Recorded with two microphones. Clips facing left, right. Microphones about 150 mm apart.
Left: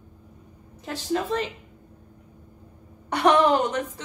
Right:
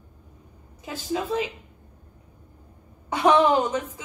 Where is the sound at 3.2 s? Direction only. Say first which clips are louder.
Even; 10° right (ahead or behind).